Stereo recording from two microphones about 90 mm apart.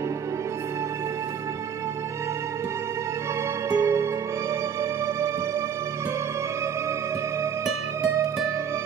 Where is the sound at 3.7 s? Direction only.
40° right (ahead or behind).